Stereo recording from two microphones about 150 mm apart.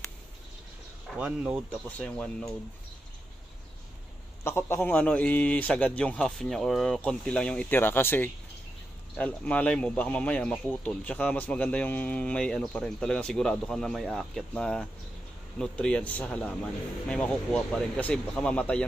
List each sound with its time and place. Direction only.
1.1 s speech: 10° right (ahead or behind)
1.7 s speech: 5° left (ahead or behind)
4.4 s speech: 15° left (ahead or behind)